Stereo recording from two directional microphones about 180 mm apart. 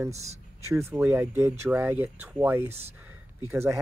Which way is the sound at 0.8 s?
15° right (ahead or behind).